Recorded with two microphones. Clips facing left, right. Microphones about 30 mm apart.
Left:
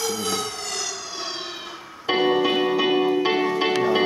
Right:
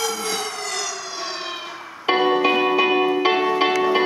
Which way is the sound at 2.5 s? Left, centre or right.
Right.